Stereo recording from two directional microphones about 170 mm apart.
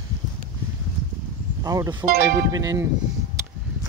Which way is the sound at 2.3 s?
20° right (ahead or behind).